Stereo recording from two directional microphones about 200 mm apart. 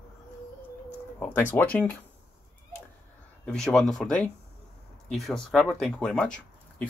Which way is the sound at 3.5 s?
5° left (ahead or behind).